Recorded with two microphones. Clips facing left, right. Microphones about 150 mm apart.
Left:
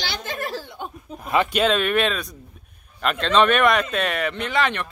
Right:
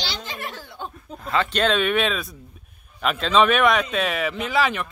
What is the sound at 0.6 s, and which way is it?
Speech, 15° left (ahead or behind).